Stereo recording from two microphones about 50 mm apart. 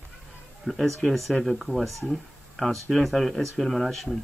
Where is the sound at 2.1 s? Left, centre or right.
Centre.